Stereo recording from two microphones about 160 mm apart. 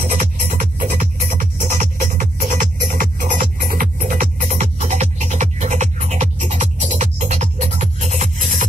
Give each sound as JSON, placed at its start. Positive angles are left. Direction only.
{"t": 0.6, "sound": "music", "side_deg": -55}